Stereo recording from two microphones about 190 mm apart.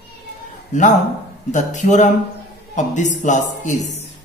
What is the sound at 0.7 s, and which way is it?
A man's voice, 40° left (ahead or behind).